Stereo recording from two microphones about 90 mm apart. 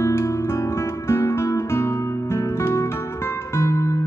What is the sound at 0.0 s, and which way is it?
Music, 30° left (ahead or behind).